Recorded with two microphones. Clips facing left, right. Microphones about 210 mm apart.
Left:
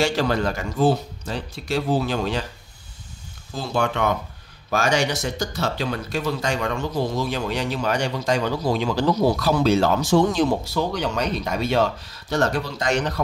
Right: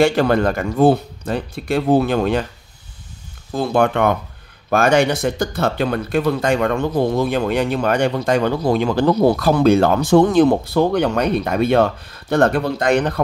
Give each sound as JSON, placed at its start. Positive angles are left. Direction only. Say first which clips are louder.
{"t": 0.0, "sound": "speech", "louder": "right 7 dB", "side_deg": -55}
{"t": 3.5, "sound": "speech", "louder": "right 7 dB", "side_deg": -55}